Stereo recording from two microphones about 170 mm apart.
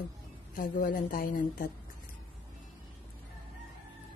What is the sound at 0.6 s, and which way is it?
Speech, 55° left (ahead or behind).